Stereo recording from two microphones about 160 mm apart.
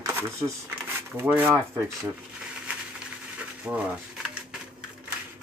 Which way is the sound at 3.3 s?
10° right (ahead or behind).